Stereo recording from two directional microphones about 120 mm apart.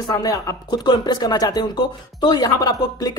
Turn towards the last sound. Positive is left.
turn(degrees=35)  # may be behind; listen again after turning